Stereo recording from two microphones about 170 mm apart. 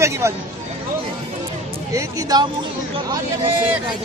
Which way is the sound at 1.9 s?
20° right (ahead or behind).